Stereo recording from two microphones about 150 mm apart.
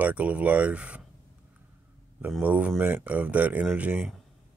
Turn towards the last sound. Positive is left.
turn(degrees=-10)  # may be behind; listen again after turning